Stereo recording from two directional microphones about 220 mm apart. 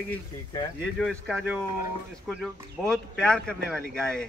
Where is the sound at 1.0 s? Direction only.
Centre (ahead or behind).